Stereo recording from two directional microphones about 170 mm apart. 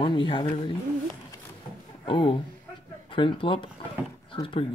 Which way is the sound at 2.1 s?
30° left (ahead or behind).